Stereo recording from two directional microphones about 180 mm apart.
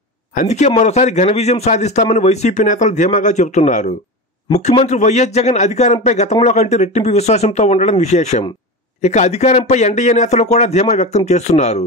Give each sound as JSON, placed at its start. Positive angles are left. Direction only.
{"t": 0.3, "sound": "a man's voice", "side_deg": 40}